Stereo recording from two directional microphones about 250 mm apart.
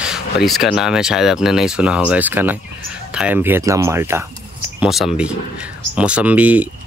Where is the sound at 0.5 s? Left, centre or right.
Centre.